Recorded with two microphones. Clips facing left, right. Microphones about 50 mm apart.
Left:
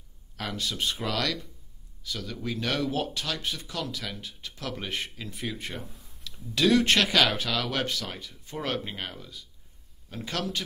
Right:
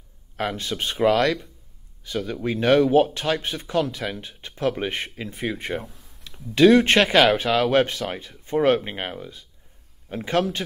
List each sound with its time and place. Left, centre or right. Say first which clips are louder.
0.4 s speech: right 5 dB; right